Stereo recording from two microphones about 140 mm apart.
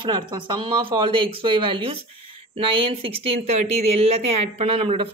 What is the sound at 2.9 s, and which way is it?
Speech, 40° right (ahead or behind).